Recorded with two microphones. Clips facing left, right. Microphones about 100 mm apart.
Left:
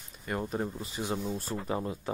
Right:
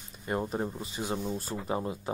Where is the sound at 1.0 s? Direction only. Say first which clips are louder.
Even; centre (ahead or behind).